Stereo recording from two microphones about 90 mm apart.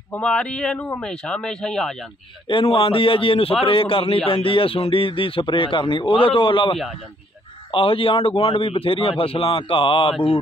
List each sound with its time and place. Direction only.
0.2 s speech: 10° left (ahead or behind)
2.4 s a man's voice: 80° left
7.7 s a man's voice: 85° left